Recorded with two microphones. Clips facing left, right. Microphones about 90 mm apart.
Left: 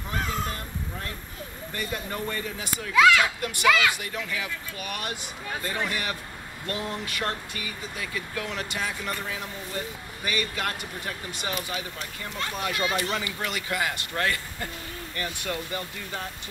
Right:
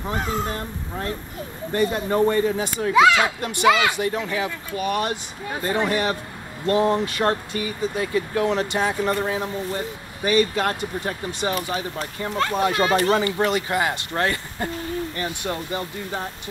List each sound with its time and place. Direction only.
0.0 s speech: 30° right (ahead or behind); by 12.5 s 45° right (ahead or behind)
12.5 s speech: 30° right (ahead or behind)
12.8 s speech: 45° right (ahead or behind); by 16.3 s 25° right (ahead or behind)